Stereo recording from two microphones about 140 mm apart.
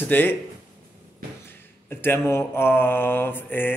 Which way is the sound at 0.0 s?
15° left (ahead or behind).